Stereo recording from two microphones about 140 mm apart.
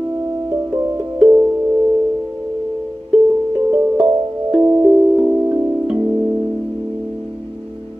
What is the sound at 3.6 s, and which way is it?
Music, 10° right (ahead or behind).